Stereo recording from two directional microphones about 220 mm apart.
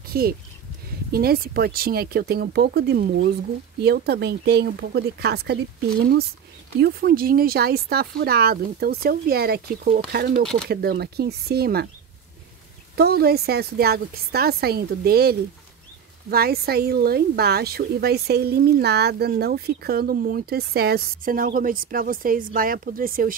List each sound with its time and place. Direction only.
0.1 s a woman's voice: 45° right (ahead or behind)
12.9 s a woman's voice: 45° right (ahead or behind)